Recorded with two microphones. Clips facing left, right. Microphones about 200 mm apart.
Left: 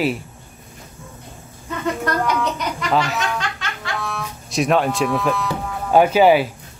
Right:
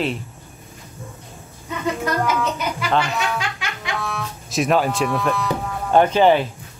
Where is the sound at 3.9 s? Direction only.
Centre (ahead or behind).